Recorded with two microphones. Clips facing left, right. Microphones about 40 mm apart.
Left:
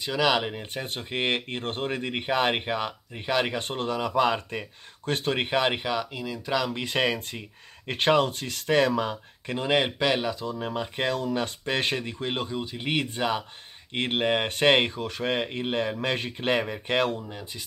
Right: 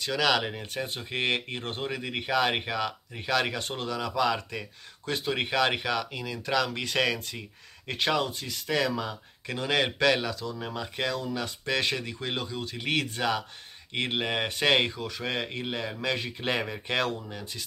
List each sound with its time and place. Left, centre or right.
0.0 s speech: centre
0.8 s speech: centre
1.1 s speech: left
3.6 s speech: left
5.4 s speech: left
7.9 s speech: left
9.5 s speech: left
12.5 s speech: left